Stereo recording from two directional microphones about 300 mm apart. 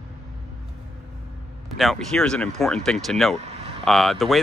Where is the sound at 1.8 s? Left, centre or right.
Centre.